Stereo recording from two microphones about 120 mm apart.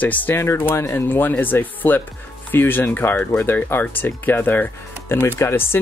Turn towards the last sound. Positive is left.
turn(degrees=20)  # may be behind; listen again after turning